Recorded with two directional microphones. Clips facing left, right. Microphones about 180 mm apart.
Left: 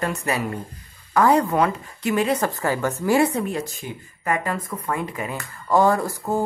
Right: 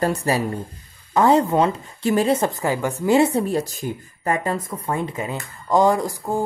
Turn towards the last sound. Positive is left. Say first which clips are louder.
# even
turn(degrees=-15)  # may be behind; listen again after turning